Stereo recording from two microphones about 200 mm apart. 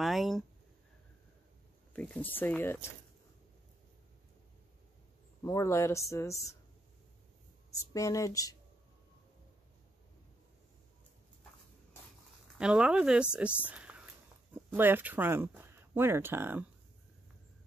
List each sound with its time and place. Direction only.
0.0 s speech: centre (ahead or behind)
2.0 s speech: 5° left (ahead or behind)
5.4 s speech: 15° left (ahead or behind)
7.9 s speech: 15° left (ahead or behind)
12.5 s speech: 5° right (ahead or behind)
13.7 s a sound: 5° right (ahead or behind)
14.8 s speech: 10° right (ahead or behind)